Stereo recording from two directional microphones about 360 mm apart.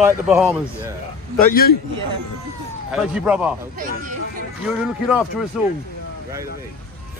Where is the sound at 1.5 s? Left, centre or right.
Left.